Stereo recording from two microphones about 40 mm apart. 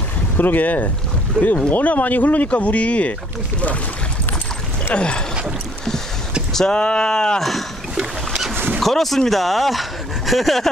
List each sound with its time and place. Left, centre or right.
0.4 s speech: left
1.4 s speech: right
1.7 s speech: left
4.9 s speech: left
6.7 s speech: left
8.7 s speech: centre